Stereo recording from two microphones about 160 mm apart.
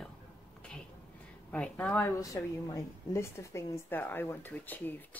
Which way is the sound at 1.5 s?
10° left (ahead or behind).